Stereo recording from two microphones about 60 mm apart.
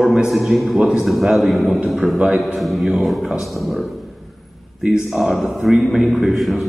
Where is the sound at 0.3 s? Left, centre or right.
Centre.